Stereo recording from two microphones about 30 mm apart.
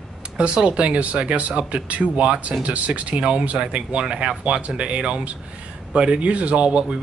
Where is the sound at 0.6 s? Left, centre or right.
Right.